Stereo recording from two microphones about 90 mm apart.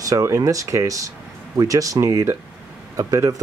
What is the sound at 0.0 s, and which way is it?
Speech, 35° right (ahead or behind).